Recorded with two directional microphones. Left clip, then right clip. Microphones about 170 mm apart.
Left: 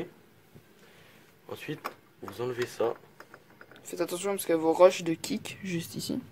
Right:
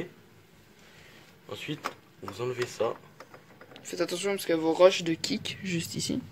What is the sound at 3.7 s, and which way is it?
Speech, 10° left (ahead or behind).